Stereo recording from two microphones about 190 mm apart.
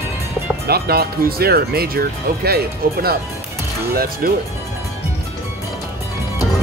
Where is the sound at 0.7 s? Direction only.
55° right (ahead or behind).